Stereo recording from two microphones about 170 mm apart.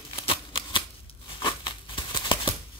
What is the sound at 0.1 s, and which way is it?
Shuffling cards, 35° left (ahead or behind).